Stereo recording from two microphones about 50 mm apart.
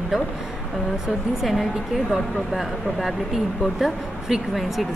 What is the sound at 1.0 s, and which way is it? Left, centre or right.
A woman's voice, centre.